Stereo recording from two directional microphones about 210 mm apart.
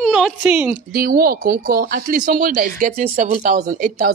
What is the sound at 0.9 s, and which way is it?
A woman's voice, 45° right (ahead or behind).